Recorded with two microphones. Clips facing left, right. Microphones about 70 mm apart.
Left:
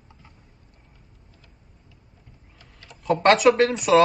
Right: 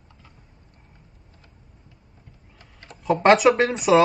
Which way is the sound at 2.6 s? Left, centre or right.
Right.